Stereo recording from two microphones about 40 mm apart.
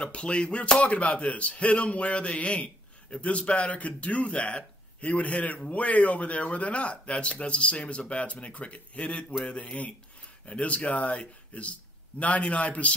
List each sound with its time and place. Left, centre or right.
0.0 s speech: left
12.2 s speech: left